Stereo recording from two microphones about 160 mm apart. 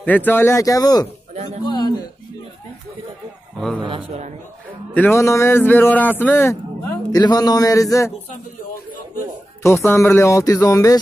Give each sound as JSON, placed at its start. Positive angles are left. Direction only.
{"t": 0.0, "sound": "a man's voice", "side_deg": 10}
{"t": 1.3, "sound": "a sound", "side_deg": -45}
{"t": 1.7, "sound": "a sound", "side_deg": 25}
{"t": 3.5, "sound": "a man's voice", "side_deg": 0}
{"t": 4.9, "sound": "a man's voice", "side_deg": 15}
{"t": 9.6, "sound": "speech", "side_deg": 15}